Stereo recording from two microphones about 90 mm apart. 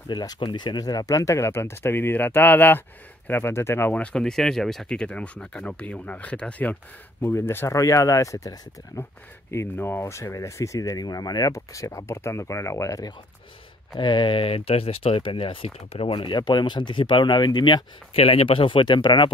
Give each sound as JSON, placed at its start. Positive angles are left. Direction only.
{"t": 0.1, "sound": "speech", "side_deg": 50}
{"t": 0.4, "sound": "speech", "side_deg": 60}
{"t": 3.9, "sound": "speech", "side_deg": 10}
{"t": 13.9, "sound": "speech", "side_deg": 60}
{"t": 16.3, "sound": "speech", "side_deg": 55}
{"t": 18.1, "sound": "speech", "side_deg": 90}